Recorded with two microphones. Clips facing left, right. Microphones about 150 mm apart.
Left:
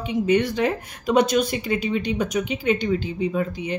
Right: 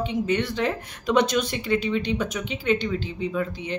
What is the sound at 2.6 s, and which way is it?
Speech, 15° left (ahead or behind).